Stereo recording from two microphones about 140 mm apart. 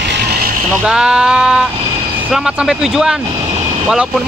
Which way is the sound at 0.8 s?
5° right (ahead or behind).